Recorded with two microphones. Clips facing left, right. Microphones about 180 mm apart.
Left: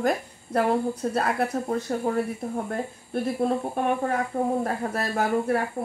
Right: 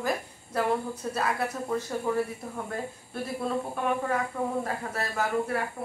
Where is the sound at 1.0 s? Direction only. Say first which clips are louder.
Left 4 dB; 50° left (ahead or behind).